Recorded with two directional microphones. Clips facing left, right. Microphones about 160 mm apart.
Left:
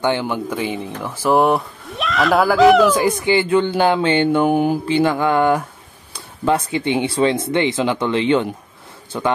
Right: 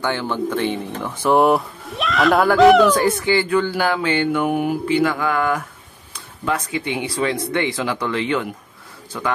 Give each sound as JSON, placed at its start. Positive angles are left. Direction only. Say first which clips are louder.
{"t": 0.0, "sound": "speech", "louder": "left 2 dB", "side_deg": 15}
{"t": 3.0, "sound": "speech", "louder": "left 1 dB", "side_deg": 15}